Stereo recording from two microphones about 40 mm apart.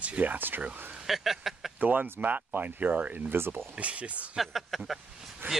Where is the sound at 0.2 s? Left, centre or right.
Right.